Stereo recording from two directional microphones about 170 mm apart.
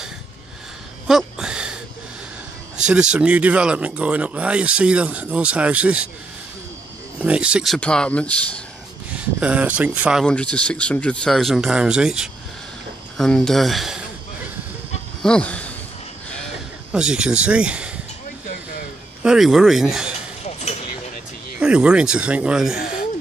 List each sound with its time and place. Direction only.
1.0 s a sound: 5° right (ahead or behind)
2.9 s speech: 5° right (ahead or behind)
7.2 s speech: 5° right (ahead or behind)
9.4 s speech: 5° right (ahead or behind)
10.2 s speech: 5° left (ahead or behind)
15.2 s speech: 5° left (ahead or behind)
16.9 s speech: 5° right (ahead or behind)
19.2 s speech: 5° right (ahead or behind)
20.4 s a sound: 40° left (ahead or behind)
21.5 s speech: 5° right (ahead or behind)